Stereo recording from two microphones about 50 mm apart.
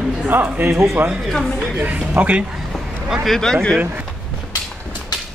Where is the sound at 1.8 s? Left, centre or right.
Right.